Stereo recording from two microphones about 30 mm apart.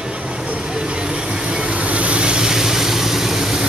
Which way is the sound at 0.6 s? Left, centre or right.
Right.